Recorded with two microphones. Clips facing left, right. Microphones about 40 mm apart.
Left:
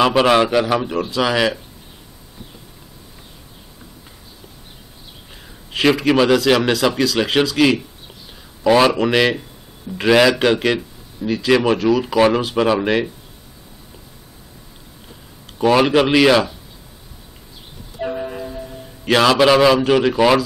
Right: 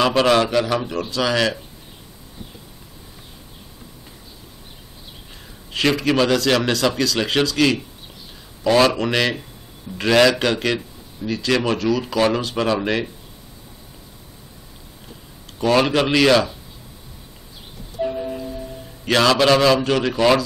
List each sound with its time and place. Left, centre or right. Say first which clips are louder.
0.0 s a man's voice: left 2 dB; centre
5.7 s a man's voice: left 3 dB; centre
15.6 s a man's voice: left 3 dB; centre
18.0 s music: even; left
19.0 s a man's voice: left 2 dB; centre